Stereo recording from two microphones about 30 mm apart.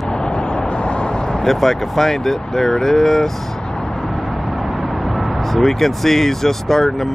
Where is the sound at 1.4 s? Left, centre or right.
Centre.